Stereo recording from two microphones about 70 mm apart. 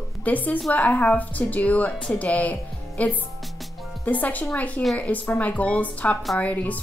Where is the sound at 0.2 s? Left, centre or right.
Left.